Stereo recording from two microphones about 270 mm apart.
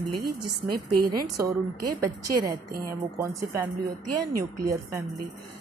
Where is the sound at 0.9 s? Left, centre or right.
Right.